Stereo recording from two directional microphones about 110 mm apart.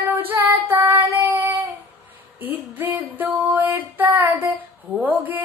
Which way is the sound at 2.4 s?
15° right (ahead or behind).